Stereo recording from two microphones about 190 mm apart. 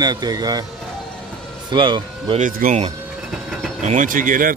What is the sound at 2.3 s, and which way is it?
Speech, 45° right (ahead or behind).